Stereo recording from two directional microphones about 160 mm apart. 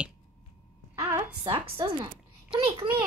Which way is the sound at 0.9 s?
20° right (ahead or behind).